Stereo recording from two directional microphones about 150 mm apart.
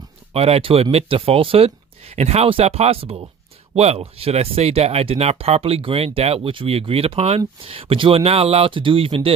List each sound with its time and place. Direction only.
0.3 s speech: 40° right (ahead or behind)